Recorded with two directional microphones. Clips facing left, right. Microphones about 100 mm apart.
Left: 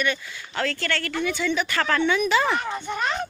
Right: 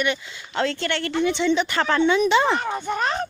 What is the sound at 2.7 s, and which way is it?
Speech, 40° right (ahead or behind).